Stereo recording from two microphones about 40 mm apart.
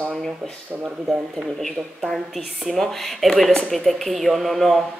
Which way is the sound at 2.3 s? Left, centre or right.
Centre.